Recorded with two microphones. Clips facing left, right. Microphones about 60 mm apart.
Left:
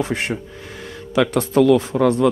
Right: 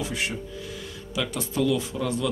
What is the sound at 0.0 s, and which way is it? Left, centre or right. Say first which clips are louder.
Speech: left 7 dB; left.